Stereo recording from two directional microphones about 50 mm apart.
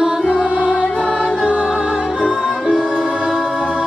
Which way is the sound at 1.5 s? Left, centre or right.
Right.